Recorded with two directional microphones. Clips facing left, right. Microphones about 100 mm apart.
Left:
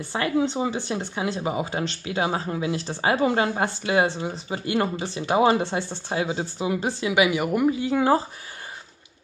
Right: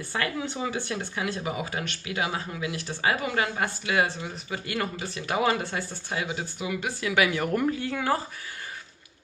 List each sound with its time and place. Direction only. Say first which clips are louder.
0.1 s speech: left 7 dB; 25° left (ahead or behind)